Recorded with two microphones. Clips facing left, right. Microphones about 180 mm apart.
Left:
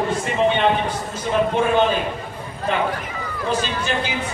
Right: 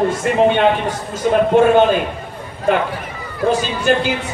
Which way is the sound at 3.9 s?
50° right (ahead or behind).